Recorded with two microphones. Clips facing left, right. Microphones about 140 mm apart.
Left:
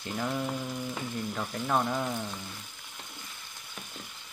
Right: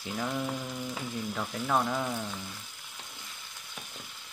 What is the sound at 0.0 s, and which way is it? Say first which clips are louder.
Frying: left 1 dB; centre (ahead or behind).